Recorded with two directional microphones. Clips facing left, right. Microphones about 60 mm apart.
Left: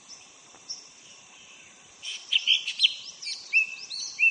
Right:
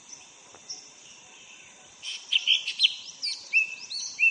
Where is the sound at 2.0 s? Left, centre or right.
Centre.